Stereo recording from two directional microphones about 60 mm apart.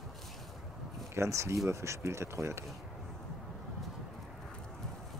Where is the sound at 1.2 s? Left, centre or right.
Right.